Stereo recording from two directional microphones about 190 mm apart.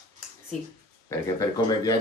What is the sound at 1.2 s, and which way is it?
Speech, 20° left (ahead or behind).